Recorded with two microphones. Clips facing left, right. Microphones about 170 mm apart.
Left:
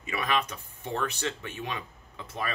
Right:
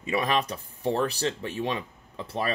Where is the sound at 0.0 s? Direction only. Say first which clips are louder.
Right 4 dB; 35° right (ahead or behind).